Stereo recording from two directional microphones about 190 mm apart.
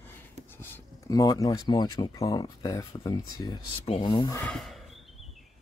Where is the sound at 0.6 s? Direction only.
15° left (ahead or behind).